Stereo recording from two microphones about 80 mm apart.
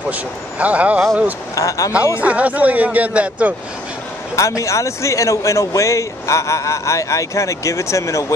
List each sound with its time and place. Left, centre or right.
0.1 s speech: centre
1.5 s speech: left
2.2 s speech: centre
4.4 s a man's voice: left